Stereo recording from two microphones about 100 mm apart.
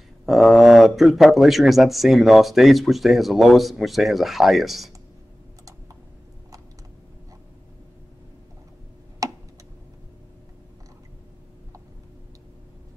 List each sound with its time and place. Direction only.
0.2 s speech: centre (ahead or behind)
9.2 s tick: 35° right (ahead or behind)